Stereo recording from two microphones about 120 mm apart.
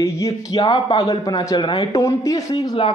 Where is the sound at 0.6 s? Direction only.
45° left (ahead or behind).